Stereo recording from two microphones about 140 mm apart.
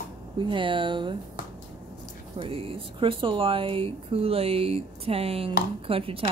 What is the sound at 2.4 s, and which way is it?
Speech, 40° right (ahead or behind).